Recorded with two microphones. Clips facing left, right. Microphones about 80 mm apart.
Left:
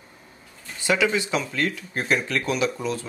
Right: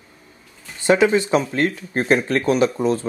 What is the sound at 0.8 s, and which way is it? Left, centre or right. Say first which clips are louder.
Speech: right 7 dB; right.